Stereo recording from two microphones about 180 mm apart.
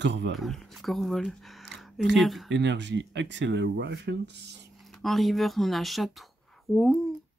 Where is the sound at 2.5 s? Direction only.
75° right (ahead or behind).